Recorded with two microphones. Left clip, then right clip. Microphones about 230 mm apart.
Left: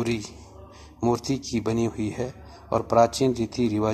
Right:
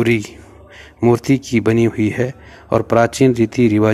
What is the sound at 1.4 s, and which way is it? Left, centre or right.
Speech, right.